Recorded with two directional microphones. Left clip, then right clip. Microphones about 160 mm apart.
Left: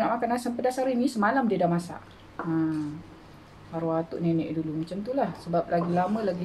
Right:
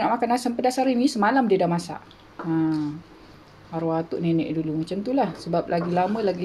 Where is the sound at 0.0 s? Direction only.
55° right (ahead or behind).